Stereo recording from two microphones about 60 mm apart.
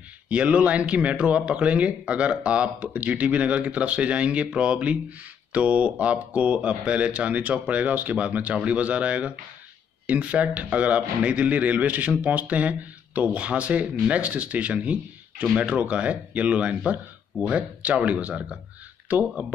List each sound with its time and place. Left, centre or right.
0.3 s speech: right